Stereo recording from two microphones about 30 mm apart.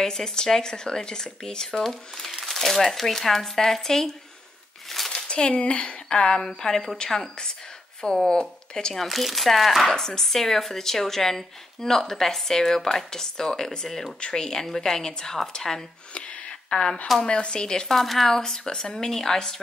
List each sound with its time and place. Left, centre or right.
0.0 s speech: centre
1.8 s speech: centre
4.8 s a sound: centre
5.1 s a sound: left
5.6 s speech: left
9.0 s speech: centre
9.9 s speech: centre
13.8 s speech: centre
14.2 s speech: left
16.2 s a sound: left
16.6 s speech: left
17.8 s speech: centre
18.3 s speech: centre